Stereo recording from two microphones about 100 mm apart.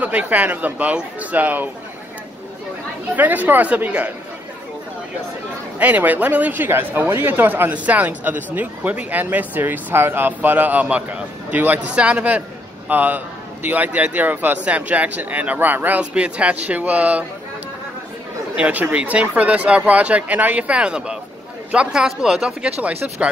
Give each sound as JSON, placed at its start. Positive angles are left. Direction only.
{"t": 0.0, "sound": "speech", "side_deg": -15}
{"t": 3.2, "sound": "speech", "side_deg": -15}
{"t": 5.8, "sound": "speech", "side_deg": -15}
{"t": 18.6, "sound": "speech", "side_deg": -15}